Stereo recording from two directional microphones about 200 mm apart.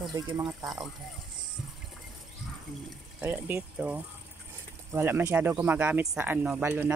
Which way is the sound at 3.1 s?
10° right (ahead or behind).